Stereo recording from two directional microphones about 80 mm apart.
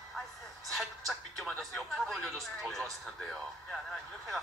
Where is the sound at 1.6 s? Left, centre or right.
Centre.